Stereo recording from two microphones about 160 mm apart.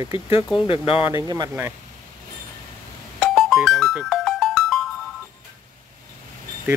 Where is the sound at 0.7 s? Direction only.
35° left (ahead or behind).